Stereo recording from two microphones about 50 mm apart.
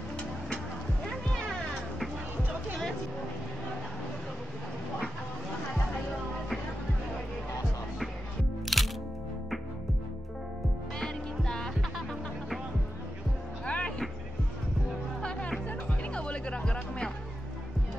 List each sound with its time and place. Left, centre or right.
1.0 s music: centre
8.7 s music: centre
11.0 s music: centre
13.7 s vehicle: left
16.1 s music: left